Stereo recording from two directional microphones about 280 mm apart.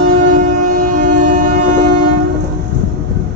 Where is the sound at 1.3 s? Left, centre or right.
Right.